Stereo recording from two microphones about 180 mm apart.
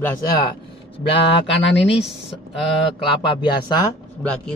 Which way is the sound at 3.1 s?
25° left (ahead or behind).